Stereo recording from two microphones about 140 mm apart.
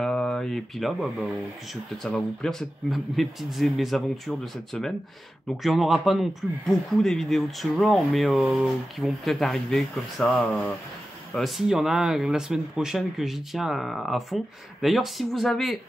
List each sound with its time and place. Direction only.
0.0 s speech: 5° left (ahead or behind)